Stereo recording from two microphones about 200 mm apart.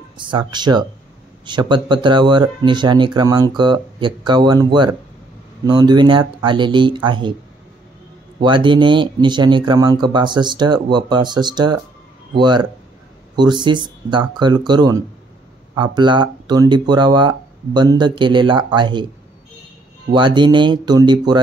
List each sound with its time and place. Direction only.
0.2 s speech: 25° right (ahead or behind)
8.4 s speech: 25° right (ahead or behind)
20.1 s speech: 25° right (ahead or behind)